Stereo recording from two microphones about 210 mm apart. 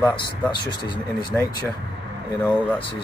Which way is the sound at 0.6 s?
20° left (ahead or behind).